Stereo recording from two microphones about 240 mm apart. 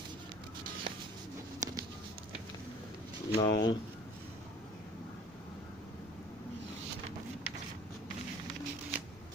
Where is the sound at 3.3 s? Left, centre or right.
Centre.